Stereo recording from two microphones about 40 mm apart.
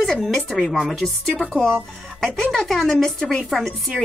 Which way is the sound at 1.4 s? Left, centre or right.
Centre.